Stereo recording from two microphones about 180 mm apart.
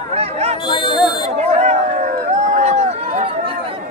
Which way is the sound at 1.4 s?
40° right (ahead or behind).